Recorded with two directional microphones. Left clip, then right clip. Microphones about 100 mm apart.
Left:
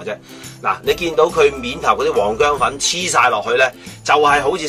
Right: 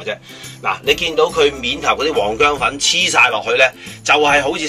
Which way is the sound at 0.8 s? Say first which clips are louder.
Right 1 dB; 25° left (ahead or behind).